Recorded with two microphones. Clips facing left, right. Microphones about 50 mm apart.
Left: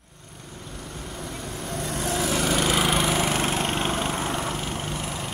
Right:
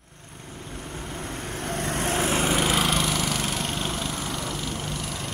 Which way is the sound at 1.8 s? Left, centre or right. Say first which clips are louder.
Right 1 dB; right.